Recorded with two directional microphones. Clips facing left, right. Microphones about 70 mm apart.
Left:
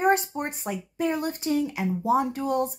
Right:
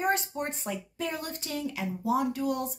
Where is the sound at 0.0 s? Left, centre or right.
Left.